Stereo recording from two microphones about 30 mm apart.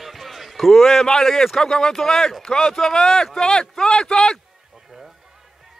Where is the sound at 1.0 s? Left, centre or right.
Centre.